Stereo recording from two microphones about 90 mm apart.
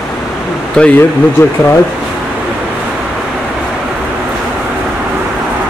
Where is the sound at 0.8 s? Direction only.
10° left (ahead or behind).